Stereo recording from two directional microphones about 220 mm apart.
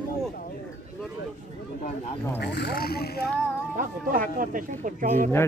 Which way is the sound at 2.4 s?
50° left (ahead or behind).